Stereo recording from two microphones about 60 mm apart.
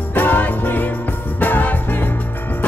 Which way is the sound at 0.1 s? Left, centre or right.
Left.